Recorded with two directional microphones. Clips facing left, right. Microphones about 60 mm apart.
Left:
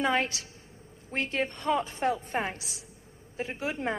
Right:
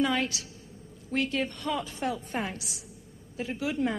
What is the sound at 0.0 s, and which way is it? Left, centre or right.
A woman's voice, left.